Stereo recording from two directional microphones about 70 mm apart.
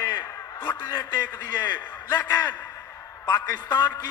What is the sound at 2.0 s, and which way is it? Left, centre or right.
Speech, left.